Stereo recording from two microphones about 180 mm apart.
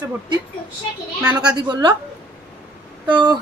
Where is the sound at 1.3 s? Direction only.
25° right (ahead or behind).